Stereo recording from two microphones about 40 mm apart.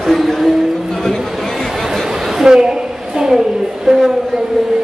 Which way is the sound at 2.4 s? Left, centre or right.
Centre.